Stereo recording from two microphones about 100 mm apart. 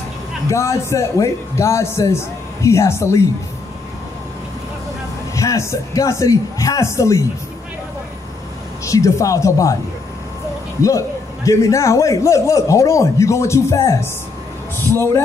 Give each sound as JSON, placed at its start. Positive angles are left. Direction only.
{"t": 0.5, "sound": "speech", "side_deg": 30}
{"t": 5.3, "sound": "a man's voice", "side_deg": 30}
{"t": 8.8, "sound": "a man's voice", "side_deg": 35}
{"t": 10.8, "sound": "a man's voice", "side_deg": 35}